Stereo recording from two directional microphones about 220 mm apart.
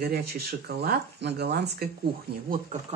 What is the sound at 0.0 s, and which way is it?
Speech, 45° right (ahead or behind).